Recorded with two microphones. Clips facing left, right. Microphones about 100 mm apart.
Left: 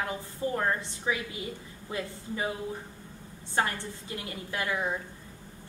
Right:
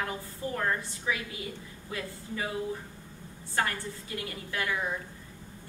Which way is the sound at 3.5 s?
25° left (ahead or behind).